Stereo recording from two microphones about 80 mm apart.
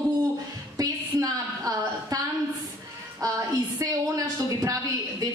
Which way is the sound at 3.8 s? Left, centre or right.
Right.